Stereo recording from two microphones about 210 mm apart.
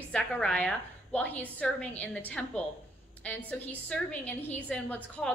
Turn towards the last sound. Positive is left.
turn(degrees=5)  # may be behind; listen again after turning